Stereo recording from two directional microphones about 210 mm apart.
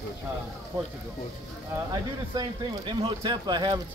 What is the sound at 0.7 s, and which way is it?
Speech, 25° right (ahead or behind).